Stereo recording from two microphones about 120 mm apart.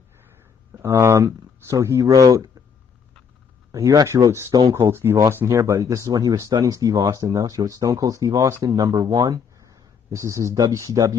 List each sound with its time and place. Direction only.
0.8 s speech: 25° right (ahead or behind)
3.7 s speech: 30° right (ahead or behind)